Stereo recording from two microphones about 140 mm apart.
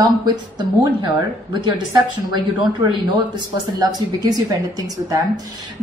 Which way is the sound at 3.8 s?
30° right (ahead or behind).